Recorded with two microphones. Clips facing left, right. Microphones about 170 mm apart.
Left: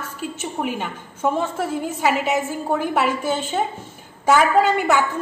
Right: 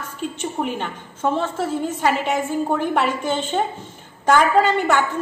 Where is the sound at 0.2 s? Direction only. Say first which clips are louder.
Right 2 dB; 5° left (ahead or behind).